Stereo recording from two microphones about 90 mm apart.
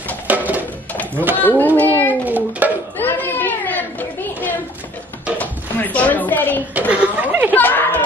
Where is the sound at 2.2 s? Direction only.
20° right (ahead or behind).